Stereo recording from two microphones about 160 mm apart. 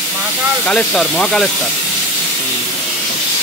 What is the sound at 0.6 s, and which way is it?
Speech, 5° left (ahead or behind).